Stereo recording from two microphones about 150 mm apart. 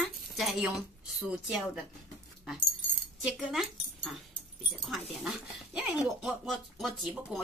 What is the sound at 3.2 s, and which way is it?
Speech, 5° right (ahead or behind).